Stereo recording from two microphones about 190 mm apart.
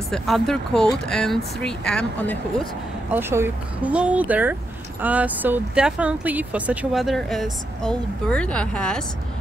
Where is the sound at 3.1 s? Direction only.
10° right (ahead or behind); by 9.0 s 5° left (ahead or behind).